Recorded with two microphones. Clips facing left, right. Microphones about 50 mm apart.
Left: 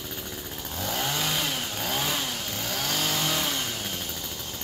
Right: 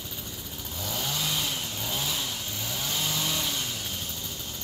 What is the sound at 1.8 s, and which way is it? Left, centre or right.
Vehicle, left.